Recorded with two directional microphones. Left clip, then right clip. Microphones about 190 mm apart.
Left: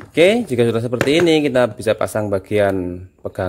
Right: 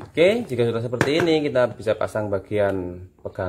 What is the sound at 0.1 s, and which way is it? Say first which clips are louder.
Speech: left 5 dB; 50° left (ahead or behind).